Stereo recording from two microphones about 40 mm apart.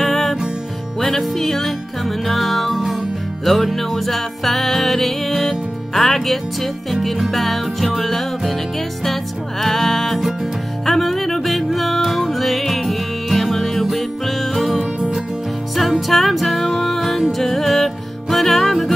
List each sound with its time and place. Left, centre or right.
0.0 s music: centre
14.8 s music: centre
15.7 s music: centre